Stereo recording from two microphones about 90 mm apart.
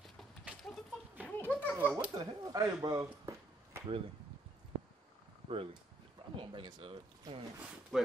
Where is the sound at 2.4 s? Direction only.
40° right (ahead or behind).